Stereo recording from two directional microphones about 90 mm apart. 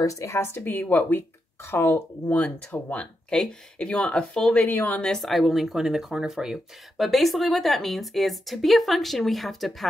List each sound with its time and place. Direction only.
0.0 s speech: 35° left (ahead or behind); by 4.6 s 10° left (ahead or behind)
4.6 s speech: 20° left (ahead or behind); by 9.8 s centre (ahead or behind)